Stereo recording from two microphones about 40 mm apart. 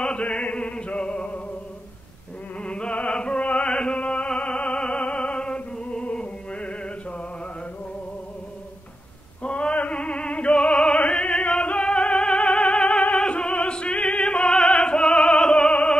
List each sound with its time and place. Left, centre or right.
0.0 s music: left
2.6 s music: left
4.0 s music: left
9.4 s a sound: left
9.8 s opera: left